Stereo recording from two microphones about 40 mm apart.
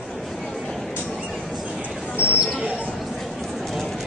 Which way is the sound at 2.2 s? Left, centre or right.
Right.